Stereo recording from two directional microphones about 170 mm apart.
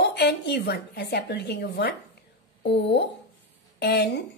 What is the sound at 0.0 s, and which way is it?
A woman's voice, 75° left (ahead or behind).